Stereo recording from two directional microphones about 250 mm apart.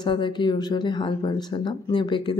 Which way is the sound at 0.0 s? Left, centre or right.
Centre.